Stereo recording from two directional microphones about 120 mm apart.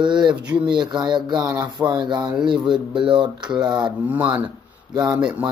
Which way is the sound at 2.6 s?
45° right (ahead or behind).